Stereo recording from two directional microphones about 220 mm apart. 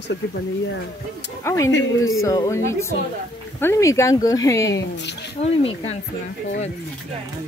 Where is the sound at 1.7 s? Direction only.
65° left (ahead or behind).